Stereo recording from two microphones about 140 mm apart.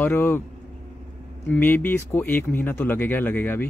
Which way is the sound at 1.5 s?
15° left (ahead or behind).